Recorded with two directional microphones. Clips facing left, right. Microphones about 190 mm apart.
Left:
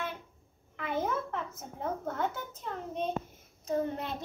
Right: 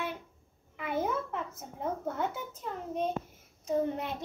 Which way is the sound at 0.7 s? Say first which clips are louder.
Right 1 dB; 10° right (ahead or behind).